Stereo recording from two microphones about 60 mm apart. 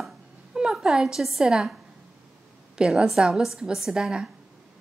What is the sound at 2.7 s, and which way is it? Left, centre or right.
A woman's voice, centre.